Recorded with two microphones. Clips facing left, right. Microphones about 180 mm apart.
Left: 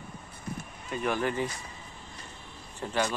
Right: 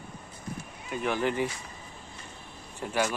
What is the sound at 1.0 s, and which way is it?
Speech, 15° right (ahead or behind).